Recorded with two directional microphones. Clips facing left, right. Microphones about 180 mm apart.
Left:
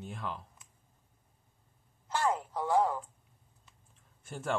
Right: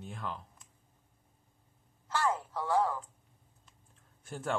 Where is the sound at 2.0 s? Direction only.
15° left (ahead or behind).